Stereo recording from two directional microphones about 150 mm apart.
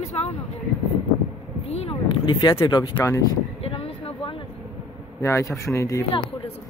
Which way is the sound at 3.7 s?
40° left (ahead or behind).